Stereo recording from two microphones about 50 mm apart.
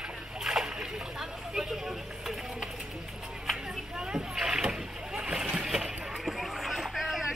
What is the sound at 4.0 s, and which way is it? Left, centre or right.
Rowboat, centre.